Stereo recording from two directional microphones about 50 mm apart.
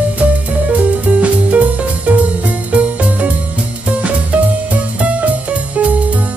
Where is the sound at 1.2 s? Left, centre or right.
Right.